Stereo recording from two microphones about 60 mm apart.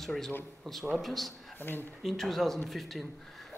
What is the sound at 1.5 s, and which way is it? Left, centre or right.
Speech, left.